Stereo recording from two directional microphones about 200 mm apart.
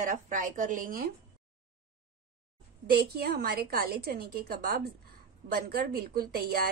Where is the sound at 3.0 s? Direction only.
50° right (ahead or behind).